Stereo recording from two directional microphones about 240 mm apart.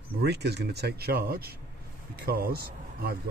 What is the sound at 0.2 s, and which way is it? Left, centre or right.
Speech, right.